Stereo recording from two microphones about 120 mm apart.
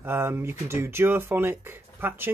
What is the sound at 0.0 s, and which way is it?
Speech, 20° right (ahead or behind).